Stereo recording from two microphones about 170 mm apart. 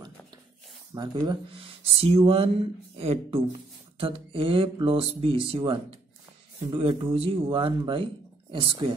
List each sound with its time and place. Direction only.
0.9 s speech: 25° right (ahead or behind)